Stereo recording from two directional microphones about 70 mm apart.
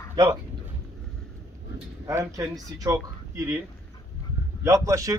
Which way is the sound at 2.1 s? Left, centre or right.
Right.